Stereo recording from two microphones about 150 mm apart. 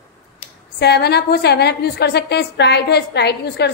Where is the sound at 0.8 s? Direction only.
90° left.